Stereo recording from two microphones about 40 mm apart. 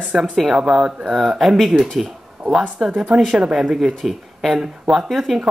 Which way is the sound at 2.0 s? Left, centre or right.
Centre.